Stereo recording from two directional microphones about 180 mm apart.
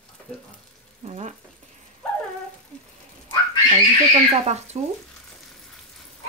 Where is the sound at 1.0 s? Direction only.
40° right (ahead or behind).